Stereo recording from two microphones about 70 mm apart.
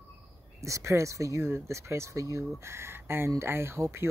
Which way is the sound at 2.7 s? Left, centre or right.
Right.